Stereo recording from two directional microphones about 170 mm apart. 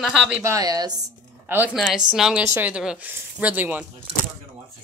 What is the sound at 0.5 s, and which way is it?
Speech, 20° right (ahead or behind).